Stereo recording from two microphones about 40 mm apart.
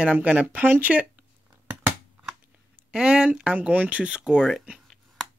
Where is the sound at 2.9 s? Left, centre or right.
Right.